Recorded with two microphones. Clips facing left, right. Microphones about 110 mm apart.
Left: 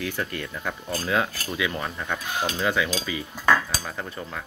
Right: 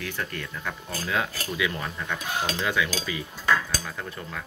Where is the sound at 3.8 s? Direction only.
20° left (ahead or behind).